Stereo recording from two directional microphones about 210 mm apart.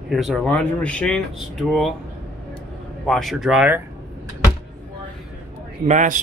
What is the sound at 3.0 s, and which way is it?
Speech, centre (ahead or behind).